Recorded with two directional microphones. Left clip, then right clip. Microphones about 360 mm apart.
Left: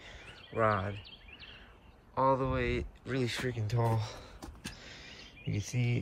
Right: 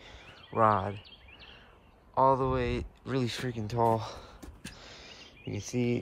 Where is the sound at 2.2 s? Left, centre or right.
Centre.